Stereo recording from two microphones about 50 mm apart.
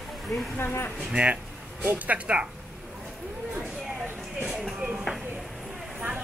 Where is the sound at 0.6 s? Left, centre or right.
Left.